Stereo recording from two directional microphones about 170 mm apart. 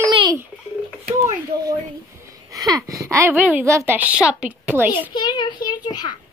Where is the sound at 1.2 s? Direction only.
20° right (ahead or behind).